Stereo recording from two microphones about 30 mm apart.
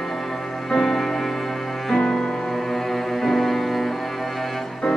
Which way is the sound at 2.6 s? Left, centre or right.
Centre.